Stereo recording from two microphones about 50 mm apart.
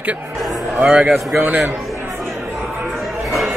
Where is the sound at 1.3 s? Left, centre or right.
Right.